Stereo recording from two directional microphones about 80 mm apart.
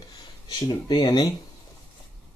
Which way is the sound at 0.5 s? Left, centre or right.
Left.